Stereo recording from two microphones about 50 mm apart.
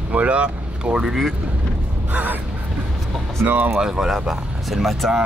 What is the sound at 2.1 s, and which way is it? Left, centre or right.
Speech, right.